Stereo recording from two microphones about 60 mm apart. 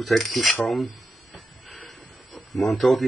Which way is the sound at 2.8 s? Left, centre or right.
Centre.